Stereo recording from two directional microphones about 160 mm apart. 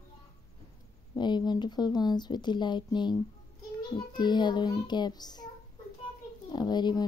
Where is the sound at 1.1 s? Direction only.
25° left (ahead or behind).